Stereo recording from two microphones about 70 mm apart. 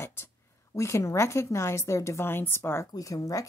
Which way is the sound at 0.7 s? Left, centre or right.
Left.